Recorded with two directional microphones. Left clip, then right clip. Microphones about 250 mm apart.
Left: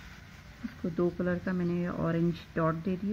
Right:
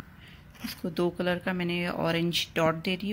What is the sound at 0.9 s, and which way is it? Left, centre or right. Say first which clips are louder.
Speech: right 3 dB; right.